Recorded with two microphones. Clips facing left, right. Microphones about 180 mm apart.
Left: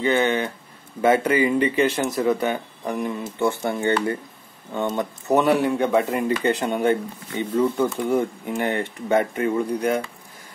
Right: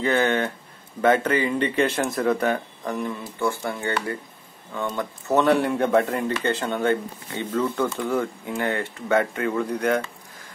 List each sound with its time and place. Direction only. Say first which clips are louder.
0.0 s speech: left 1 dB; centre (ahead or behind)
2.8 s speech: left 2 dB; 15° left (ahead or behind)
5.6 s speech: even; centre (ahead or behind)